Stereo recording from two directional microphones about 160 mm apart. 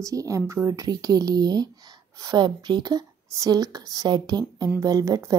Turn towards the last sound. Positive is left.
turn(degrees=-20)  # may be behind; listen again after turning